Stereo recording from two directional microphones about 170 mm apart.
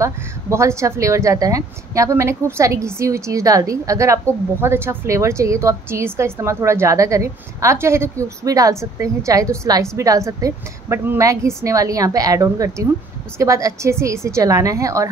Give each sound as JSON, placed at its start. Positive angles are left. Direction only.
{"t": 0.0, "sound": "a woman's voice", "side_deg": -15}